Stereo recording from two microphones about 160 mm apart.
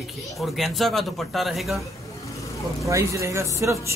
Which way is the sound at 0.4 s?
Centre (ahead or behind).